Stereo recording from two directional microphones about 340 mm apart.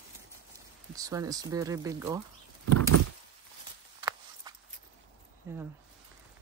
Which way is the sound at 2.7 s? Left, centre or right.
Right.